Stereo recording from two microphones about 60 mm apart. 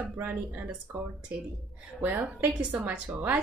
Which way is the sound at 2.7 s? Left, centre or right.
Right.